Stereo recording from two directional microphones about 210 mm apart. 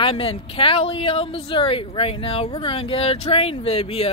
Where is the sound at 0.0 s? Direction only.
25° left (ahead or behind).